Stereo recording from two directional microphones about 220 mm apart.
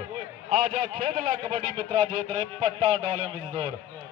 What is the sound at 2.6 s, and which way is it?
A man's voice, 20° right (ahead or behind).